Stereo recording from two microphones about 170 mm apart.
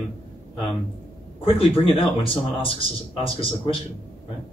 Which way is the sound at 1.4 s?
30° left (ahead or behind).